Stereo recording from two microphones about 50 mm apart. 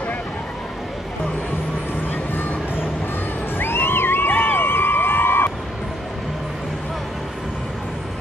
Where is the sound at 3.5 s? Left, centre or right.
Left.